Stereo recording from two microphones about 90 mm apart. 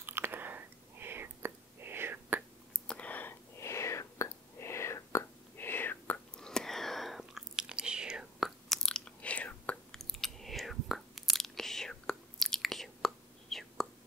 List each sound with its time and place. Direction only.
0.0 s whispering: 25° right (ahead or behind)
2.9 s whispering: 15° left (ahead or behind)
9.9 s chewing: 5° left (ahead or behind)